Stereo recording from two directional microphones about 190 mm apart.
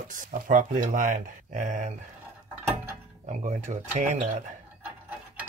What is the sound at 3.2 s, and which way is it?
Speech, 40° right (ahead or behind).